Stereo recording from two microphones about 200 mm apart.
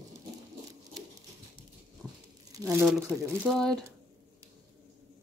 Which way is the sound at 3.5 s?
Centre (ahead or behind).